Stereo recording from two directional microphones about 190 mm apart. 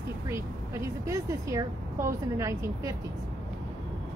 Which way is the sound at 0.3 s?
15° right (ahead or behind).